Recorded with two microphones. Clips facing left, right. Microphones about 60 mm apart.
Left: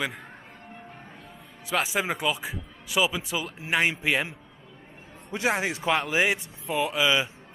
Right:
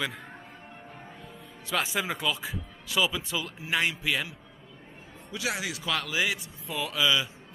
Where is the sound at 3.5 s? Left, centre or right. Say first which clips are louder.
Left 4 dB; left.